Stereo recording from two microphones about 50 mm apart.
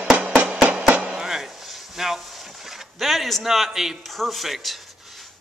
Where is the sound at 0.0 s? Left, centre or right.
Centre.